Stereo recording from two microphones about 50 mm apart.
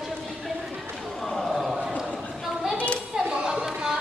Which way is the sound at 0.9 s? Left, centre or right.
Centre.